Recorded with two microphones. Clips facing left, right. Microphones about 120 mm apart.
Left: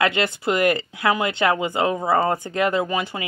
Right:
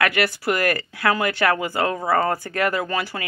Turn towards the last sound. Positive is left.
turn(degrees=20)  # may be behind; listen again after turning